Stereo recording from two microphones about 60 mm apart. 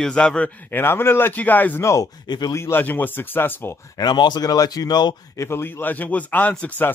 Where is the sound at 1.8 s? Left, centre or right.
Left.